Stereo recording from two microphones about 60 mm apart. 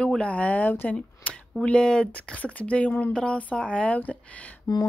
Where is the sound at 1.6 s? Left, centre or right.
Centre.